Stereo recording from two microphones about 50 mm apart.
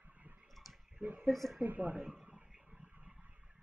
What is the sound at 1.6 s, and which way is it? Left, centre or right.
Speech, right.